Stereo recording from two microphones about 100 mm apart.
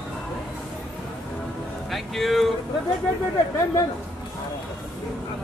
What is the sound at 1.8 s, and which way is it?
Vehicle, centre (ahead or behind).